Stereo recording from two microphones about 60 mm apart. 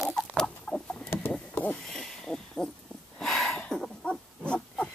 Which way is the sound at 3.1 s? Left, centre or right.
Centre.